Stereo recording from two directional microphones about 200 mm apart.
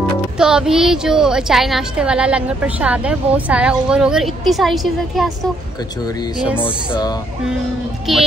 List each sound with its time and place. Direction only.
0.4 s a woman's voice: 5° right (ahead or behind)
6.6 s speech: 25° left (ahead or behind)
8.1 s a woman's voice: centre (ahead or behind)